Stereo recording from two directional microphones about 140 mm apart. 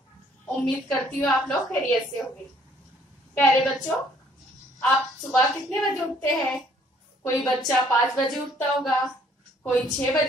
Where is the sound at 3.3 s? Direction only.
Centre (ahead or behind).